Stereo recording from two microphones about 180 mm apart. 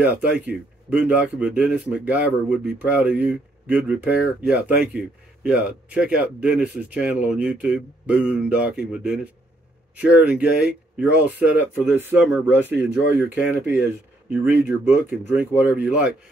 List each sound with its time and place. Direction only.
0.0 s speech: 10° right (ahead or behind)